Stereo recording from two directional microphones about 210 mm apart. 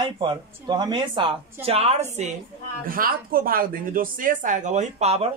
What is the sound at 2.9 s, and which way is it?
Speech, 45° right (ahead or behind).